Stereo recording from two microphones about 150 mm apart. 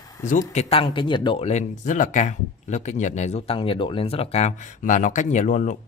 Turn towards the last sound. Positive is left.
turn(degrees=55)  # may be behind; listen again after turning